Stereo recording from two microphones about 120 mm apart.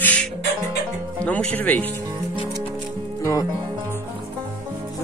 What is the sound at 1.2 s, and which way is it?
Speech, 10° left (ahead or behind).